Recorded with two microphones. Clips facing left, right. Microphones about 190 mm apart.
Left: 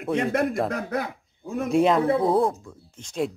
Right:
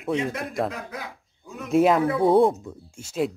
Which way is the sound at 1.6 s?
5° right (ahead or behind).